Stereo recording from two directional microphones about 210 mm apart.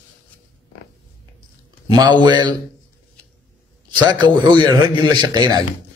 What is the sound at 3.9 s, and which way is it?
A man's voice, 20° right (ahead or behind).